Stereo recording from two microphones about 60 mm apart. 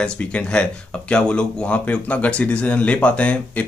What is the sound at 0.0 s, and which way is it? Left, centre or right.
Speech, left.